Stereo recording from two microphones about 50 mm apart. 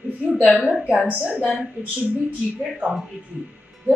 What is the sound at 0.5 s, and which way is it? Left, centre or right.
Speech, centre.